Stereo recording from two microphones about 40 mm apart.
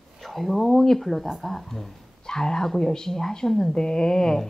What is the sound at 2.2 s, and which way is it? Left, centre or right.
A woman's voice, centre.